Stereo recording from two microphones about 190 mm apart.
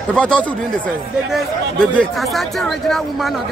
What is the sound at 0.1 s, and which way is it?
Speech, 5° left (ahead or behind).